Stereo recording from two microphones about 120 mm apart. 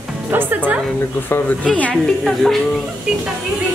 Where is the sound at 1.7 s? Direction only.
10° left (ahead or behind).